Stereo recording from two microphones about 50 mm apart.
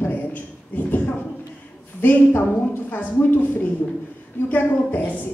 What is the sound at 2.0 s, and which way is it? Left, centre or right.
A woman's voice, left.